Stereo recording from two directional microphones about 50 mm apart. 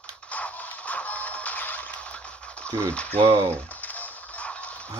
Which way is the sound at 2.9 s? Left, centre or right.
Left.